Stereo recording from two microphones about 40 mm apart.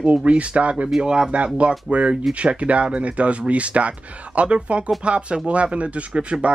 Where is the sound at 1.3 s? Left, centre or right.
Right.